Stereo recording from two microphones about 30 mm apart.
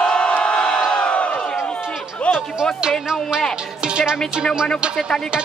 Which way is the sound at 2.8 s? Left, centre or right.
Right.